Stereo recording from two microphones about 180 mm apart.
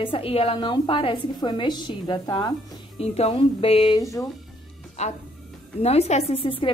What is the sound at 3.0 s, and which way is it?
Speech, 35° left (ahead or behind).